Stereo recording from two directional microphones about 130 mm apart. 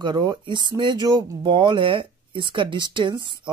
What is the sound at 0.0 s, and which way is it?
Speech, 35° right (ahead or behind).